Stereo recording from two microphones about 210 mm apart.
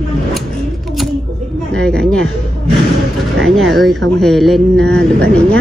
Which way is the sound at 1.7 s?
5° left (ahead or behind).